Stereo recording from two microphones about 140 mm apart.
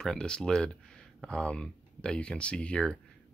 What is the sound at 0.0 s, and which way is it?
Speech, 5° left (ahead or behind).